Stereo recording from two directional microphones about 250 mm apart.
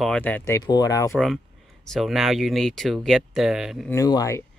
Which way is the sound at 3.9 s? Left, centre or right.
Centre.